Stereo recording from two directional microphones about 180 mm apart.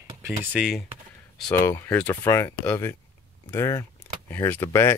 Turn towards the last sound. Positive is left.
turn(degrees=15)  # may be behind; listen again after turning